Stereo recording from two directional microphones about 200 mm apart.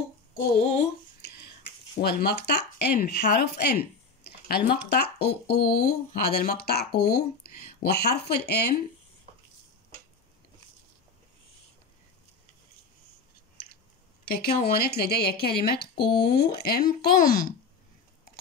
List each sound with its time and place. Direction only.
2.0 s speech: 50° left (ahead or behind)
14.2 s speech: 50° left (ahead or behind)